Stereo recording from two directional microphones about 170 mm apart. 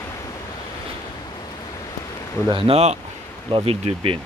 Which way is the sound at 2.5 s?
35° right (ahead or behind).